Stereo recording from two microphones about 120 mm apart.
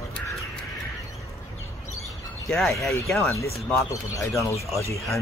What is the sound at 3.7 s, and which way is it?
Speech, 25° left (ahead or behind).